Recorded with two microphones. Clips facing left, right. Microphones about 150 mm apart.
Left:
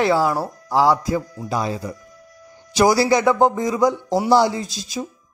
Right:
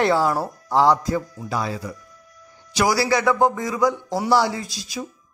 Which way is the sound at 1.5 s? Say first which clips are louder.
Left 3 dB; 20° left (ahead or behind).